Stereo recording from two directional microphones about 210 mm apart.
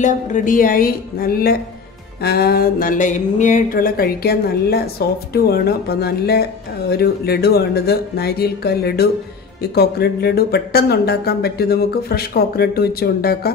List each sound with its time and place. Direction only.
0.0 s speech: 40° left (ahead or behind)